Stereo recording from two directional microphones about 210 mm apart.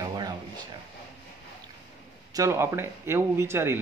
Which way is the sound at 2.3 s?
15° right (ahead or behind).